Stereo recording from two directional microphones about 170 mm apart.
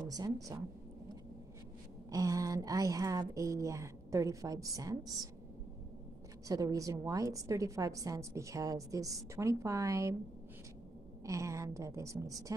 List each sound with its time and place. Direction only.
0.1 s a woman's voice: 20° right (ahead or behind)
2.0 s a woman's voice: 20° right (ahead or behind)
6.4 s a woman's voice: 20° right (ahead or behind)
11.2 s a woman's voice: 20° right (ahead or behind)